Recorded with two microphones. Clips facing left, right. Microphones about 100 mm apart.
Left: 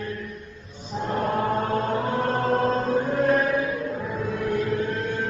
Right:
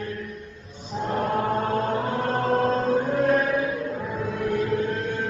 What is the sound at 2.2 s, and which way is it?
Chant, 45° right (ahead or behind).